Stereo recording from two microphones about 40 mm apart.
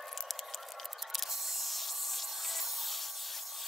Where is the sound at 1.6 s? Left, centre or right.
Centre.